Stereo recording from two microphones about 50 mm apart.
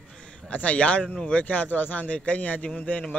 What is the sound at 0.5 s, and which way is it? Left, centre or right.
Speech, left.